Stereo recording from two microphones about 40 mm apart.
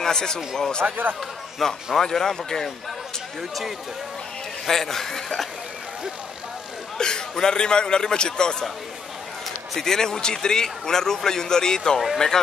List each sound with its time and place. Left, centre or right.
0.0 s speech: centre
0.8 s speech: right
1.6 s a man's voice: centre
4.6 s a man's voice: centre
7.0 s a man's voice: centre
9.8 s a man's voice: centre